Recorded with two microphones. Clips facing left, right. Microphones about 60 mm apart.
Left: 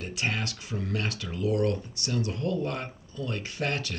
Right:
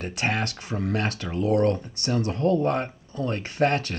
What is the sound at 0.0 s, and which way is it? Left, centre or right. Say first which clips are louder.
Speech: right 5 dB; right.